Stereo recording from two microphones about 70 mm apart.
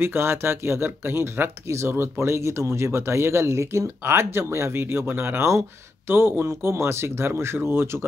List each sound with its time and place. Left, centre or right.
0.0 s speech: right